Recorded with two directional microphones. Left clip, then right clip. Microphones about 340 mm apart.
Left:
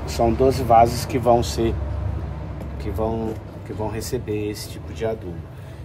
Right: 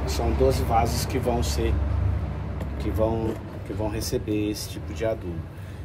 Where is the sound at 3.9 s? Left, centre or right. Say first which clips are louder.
Left 1 dB; centre.